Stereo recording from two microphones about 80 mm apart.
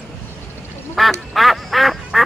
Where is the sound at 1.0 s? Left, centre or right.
Centre.